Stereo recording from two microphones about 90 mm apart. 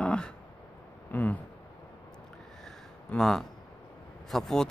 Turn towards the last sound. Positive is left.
turn(degrees=5)  # may be behind; listen again after turning